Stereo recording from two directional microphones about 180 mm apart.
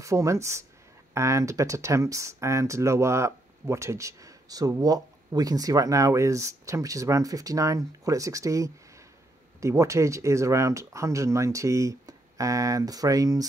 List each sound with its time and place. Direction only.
0.0 s speech: 15° right (ahead or behind)